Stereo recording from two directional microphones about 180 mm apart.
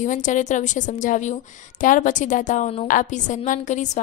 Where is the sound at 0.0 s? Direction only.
45° left (ahead or behind).